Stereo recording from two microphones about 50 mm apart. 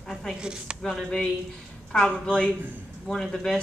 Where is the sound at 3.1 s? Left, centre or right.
Centre.